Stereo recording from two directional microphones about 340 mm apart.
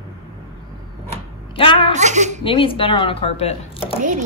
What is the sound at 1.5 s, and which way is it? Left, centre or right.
Speech, centre.